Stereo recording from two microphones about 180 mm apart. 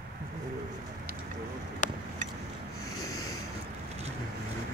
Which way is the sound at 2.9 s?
20° left (ahead or behind).